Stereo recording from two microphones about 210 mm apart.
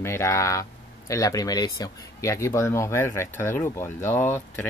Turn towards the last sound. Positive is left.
turn(degrees=10)  # may be behind; listen again after turning